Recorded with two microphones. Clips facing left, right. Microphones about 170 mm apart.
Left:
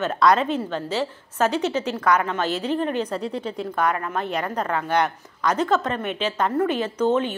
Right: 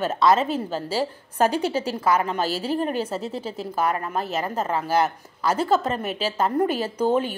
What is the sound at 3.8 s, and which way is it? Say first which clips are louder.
Speech: even; 30° right (ahead or behind).